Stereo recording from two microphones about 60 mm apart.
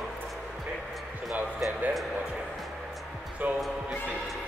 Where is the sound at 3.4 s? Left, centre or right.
Right.